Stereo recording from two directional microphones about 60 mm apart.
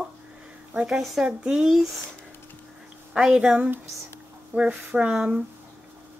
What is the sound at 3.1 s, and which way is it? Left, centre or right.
Speech, centre.